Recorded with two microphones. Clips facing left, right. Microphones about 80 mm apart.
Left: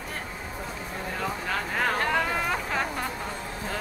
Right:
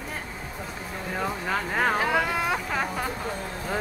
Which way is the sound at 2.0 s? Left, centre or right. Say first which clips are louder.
Right 1 dB; centre.